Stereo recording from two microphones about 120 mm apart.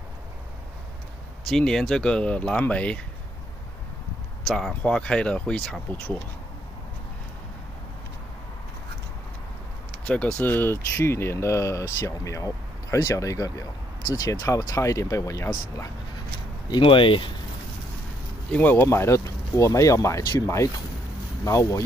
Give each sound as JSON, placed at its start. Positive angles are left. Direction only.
{"t": 1.5, "sound": "speech", "side_deg": 5}
{"t": 4.5, "sound": "speech", "side_deg": 5}
{"t": 10.0, "sound": "speech", "side_deg": 10}
{"t": 16.8, "sound": "speech", "side_deg": 45}
{"t": 18.5, "sound": "speech", "side_deg": 15}